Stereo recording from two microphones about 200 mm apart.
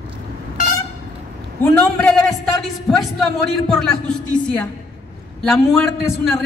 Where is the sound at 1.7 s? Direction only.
5° left (ahead or behind).